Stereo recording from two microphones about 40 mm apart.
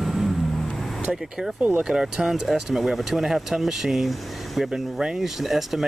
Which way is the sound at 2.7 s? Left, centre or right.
Centre.